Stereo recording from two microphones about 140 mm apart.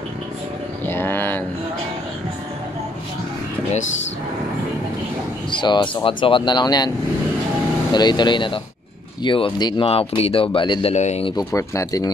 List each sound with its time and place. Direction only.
0.8 s a sound: 15° left (ahead or behind)
5.5 s speech: 35° left (ahead or behind)
7.9 s speech: 30° left (ahead or behind)
9.8 s speech: 45° left (ahead or behind)
10.9 s speech: 50° left (ahead or behind)
11.2 s speech: 25° left (ahead or behind)